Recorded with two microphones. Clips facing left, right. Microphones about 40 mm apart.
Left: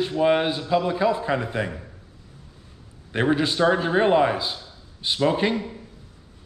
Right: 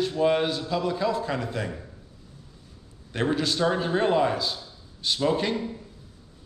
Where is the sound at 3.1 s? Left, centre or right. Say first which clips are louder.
Left 4 dB; left.